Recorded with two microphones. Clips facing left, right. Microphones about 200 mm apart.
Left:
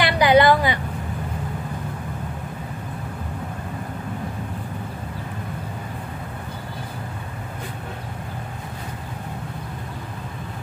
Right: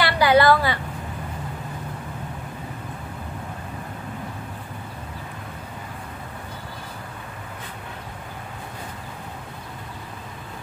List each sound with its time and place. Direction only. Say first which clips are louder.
0.0 s vehicle: left 2 dB; 20° left (ahead or behind)